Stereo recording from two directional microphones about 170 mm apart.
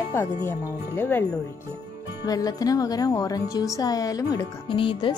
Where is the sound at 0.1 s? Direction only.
15° left (ahead or behind).